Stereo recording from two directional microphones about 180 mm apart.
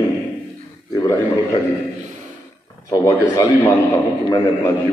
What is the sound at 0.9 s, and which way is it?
Speech, 25° left (ahead or behind).